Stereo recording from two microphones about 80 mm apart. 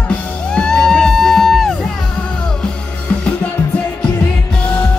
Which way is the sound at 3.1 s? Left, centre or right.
Centre.